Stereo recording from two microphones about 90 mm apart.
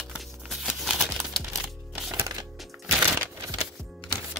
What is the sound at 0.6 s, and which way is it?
Crumpling, 5° right (ahead or behind).